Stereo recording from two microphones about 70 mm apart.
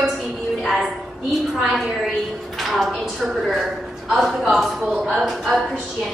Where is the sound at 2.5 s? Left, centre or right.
Centre.